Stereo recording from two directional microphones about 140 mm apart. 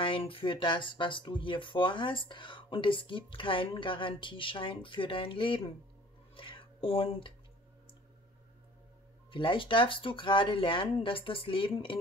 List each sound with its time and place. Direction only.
0.0 s speech: 40° left (ahead or behind)
6.3 s a sound: 40° left (ahead or behind)
9.3 s speech: 35° left (ahead or behind)